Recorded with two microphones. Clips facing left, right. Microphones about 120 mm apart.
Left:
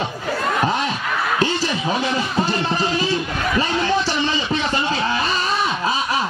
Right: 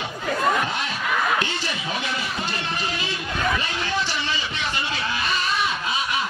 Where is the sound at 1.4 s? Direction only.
40° left (ahead or behind).